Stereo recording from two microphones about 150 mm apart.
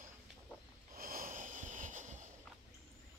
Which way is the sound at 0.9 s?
75° right (ahead or behind).